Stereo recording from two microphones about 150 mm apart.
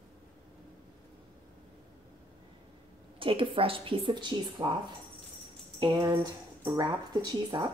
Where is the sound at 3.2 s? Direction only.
35° right (ahead or behind).